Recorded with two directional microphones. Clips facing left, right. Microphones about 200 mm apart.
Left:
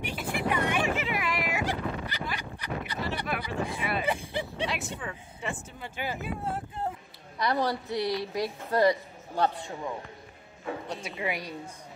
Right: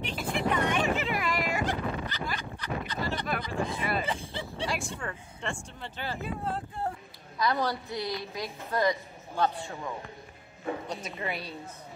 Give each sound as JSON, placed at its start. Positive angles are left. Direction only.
{"t": 0.0, "sound": "vehicle", "side_deg": 10}
{"t": 5.0, "sound": "speech", "side_deg": 5}
{"t": 7.4, "sound": "a woman's voice", "side_deg": 25}
{"t": 7.9, "sound": "a woman's voice", "side_deg": 70}
{"t": 8.4, "sound": "speech", "side_deg": 35}
{"t": 10.9, "sound": "speech", "side_deg": 10}